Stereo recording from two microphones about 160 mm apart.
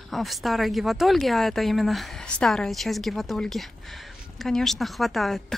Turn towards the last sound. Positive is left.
turn(degrees=0)  # may be behind; listen again after turning